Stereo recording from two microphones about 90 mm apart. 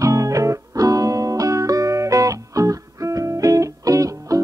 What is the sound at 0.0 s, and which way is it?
Music, 35° right (ahead or behind).